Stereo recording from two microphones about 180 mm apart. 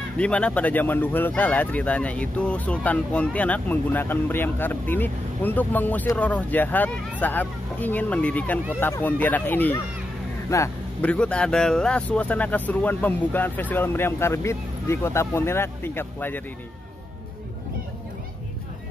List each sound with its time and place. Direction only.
0.2 s speech: 5° left (ahead or behind)